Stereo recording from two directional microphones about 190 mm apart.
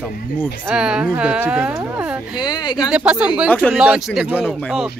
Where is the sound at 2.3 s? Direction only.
20° left (ahead or behind).